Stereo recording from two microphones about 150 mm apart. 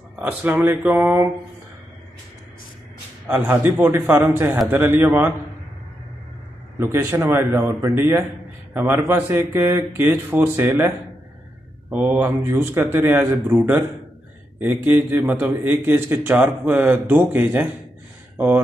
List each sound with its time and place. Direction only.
0.1 s a man's voice: 10° right (ahead or behind)
3.3 s a man's voice: 10° right (ahead or behind)
6.8 s a man's voice: 15° right (ahead or behind)
11.9 s a man's voice: 15° right (ahead or behind)
14.6 s a man's voice: 10° right (ahead or behind)